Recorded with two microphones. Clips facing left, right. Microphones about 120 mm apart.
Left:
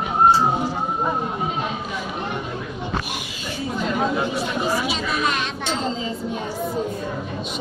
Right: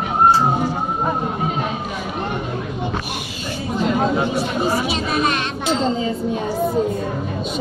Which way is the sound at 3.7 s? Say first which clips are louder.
Right 5 dB; 20° right (ahead or behind).